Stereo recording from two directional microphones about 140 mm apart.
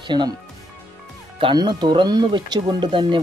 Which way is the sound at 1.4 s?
35° right (ahead or behind).